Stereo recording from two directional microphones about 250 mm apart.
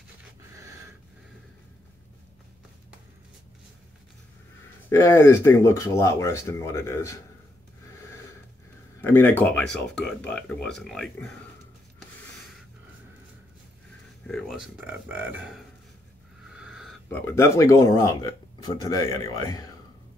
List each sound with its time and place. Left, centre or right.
4.8 s speech: centre
9.0 s speech: centre
14.2 s speech: centre